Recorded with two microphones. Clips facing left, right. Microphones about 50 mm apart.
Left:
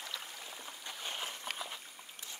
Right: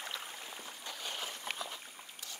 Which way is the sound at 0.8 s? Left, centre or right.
Left.